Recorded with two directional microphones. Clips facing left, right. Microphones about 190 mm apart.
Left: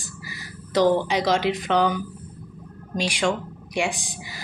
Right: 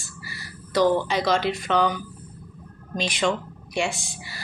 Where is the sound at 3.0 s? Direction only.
10° left (ahead or behind).